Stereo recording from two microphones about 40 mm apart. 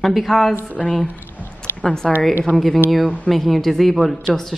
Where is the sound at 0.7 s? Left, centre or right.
Left.